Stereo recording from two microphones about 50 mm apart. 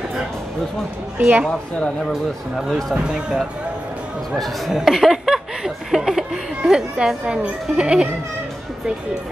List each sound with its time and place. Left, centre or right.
2.7 s speech: centre
4.4 s a sound: centre
6.6 s speech: centre